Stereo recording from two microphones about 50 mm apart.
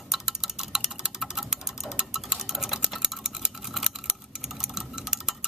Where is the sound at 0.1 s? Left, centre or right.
Centre.